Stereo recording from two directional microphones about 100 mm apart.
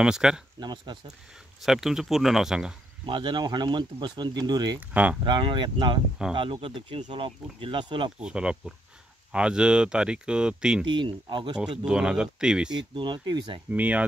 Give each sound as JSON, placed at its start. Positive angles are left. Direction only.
{"t": 0.0, "sound": "speech", "side_deg": -5}
{"t": 0.6, "sound": "speech", "side_deg": -45}
{"t": 1.6, "sound": "speech", "side_deg": -5}
{"t": 3.1, "sound": "speech", "side_deg": -55}
{"t": 4.7, "sound": "speech", "side_deg": -15}
{"t": 5.2, "sound": "speech", "side_deg": -50}
{"t": 8.2, "sound": "speech", "side_deg": -10}
{"t": 10.9, "sound": "speech", "side_deg": -50}
{"t": 11.8, "sound": "speech", "side_deg": -10}
{"t": 12.7, "sound": "speech", "side_deg": -50}
{"t": 13.7, "sound": "speech", "side_deg": -15}